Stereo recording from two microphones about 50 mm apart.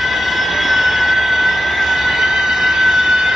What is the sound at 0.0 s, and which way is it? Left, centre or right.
Vehicle, centre.